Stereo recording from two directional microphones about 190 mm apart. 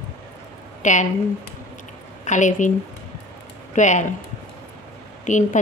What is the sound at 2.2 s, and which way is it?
Speech, 40° left (ahead or behind).